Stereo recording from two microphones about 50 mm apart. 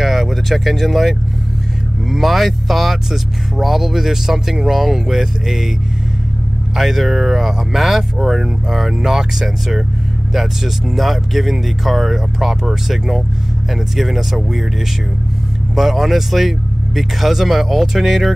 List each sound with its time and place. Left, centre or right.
0.0 s speech: centre
6.7 s speech: centre
15.7 s speech: centre